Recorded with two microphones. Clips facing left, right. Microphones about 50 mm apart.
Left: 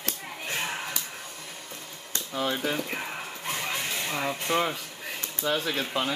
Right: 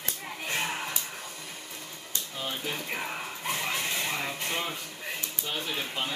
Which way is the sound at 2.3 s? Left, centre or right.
Left.